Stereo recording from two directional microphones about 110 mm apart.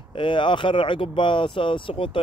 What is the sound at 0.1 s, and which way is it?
A man's voice, 50° left (ahead or behind).